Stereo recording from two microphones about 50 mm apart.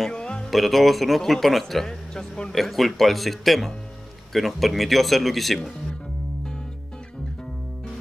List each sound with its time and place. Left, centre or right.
0.1 s music: centre
0.5 s a man's voice: centre